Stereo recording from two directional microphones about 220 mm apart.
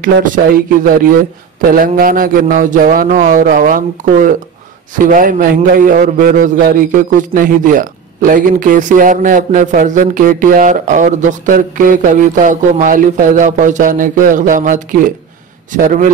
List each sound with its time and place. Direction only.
1.1 s a man's voice: 40° right (ahead or behind)